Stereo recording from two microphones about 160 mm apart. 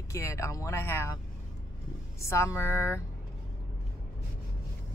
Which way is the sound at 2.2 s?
15° left (ahead or behind).